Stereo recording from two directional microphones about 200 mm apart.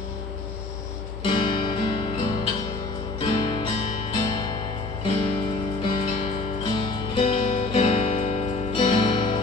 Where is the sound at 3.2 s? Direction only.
25° left (ahead or behind).